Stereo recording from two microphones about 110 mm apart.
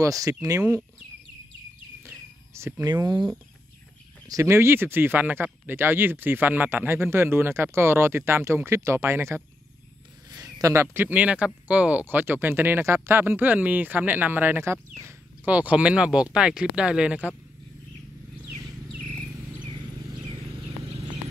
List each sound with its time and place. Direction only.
0.0 s speech: 30° right (ahead or behind)
0.6 s speech: 20° right (ahead or behind)
2.5 s speech: 25° right (ahead or behind)
2.9 s speech: 35° right (ahead or behind)
4.3 s speech: 25° right (ahead or behind)
10.4 s speech: 30° right (ahead or behind); by 17.3 s 10° right (ahead or behind)